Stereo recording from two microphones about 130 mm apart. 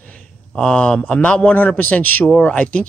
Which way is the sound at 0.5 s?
5° left (ahead or behind).